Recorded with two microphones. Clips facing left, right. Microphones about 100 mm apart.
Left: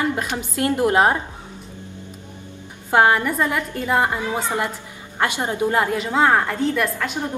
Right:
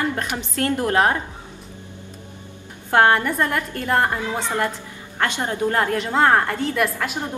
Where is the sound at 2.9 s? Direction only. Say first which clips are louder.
Even; 5° left (ahead or behind).